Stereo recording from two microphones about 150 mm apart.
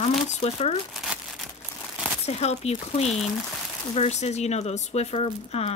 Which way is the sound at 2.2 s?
45° left (ahead or behind).